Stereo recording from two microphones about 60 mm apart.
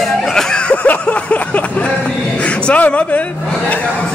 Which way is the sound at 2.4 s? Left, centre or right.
Left.